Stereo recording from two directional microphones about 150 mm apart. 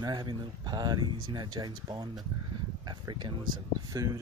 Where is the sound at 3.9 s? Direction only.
25° right (ahead or behind).